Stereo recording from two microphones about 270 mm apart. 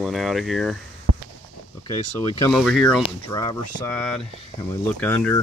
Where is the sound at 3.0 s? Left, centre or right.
Centre.